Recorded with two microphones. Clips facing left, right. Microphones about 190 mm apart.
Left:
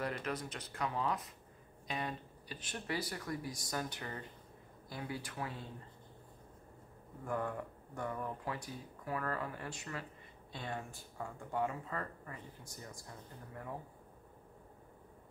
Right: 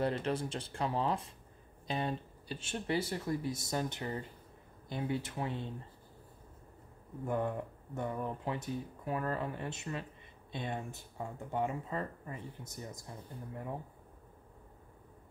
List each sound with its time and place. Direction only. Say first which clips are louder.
0.0 s speech: right 6 dB; 30° right (ahead or behind)
7.2 s speech: right 4 dB; 25° right (ahead or behind)